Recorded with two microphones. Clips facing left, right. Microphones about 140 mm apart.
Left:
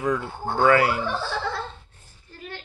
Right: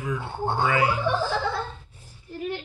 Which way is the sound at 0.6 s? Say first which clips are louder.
Left 6 dB; 75° left (ahead or behind).